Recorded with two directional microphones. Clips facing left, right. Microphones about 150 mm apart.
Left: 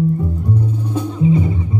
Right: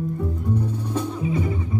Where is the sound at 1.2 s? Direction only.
25° left (ahead or behind).